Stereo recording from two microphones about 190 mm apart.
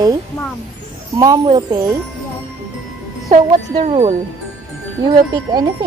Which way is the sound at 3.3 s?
35° right (ahead or behind).